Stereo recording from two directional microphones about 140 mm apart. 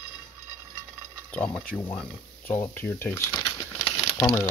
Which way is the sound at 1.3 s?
5° left (ahead or behind).